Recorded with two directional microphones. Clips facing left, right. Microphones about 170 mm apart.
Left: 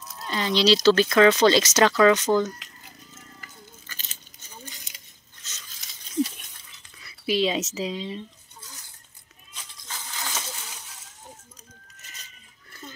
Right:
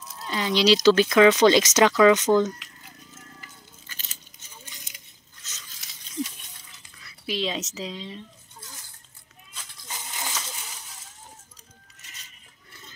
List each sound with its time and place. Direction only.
0.2 s speech: 10° right (ahead or behind)
7.0 s speech: 5° left (ahead or behind)
9.8 s a sound: 15° right (ahead or behind)